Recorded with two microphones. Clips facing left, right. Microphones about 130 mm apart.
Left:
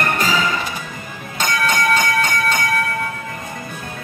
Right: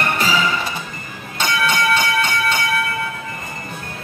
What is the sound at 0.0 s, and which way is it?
Music, 40° left (ahead or behind).